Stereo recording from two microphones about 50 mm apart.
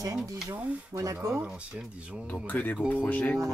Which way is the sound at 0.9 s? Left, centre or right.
Right.